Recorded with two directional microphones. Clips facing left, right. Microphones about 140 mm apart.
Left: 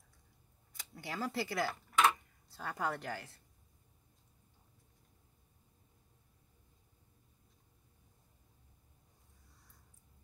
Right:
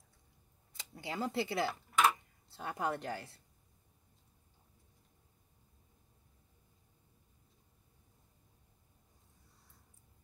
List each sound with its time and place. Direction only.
0.9 s a woman's voice: 20° right (ahead or behind)
1.7 s tick-tock: 5° right (ahead or behind)
2.5 s a woman's voice: 25° right (ahead or behind)